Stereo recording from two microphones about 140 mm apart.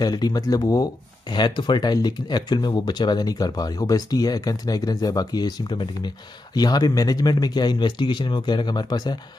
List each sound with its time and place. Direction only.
0.0 s speech: 30° left (ahead or behind)